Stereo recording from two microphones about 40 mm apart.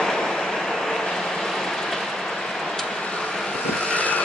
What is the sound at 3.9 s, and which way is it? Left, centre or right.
Vehicle, left.